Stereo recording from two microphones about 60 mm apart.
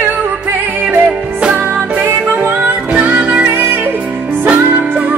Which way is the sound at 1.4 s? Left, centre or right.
Centre.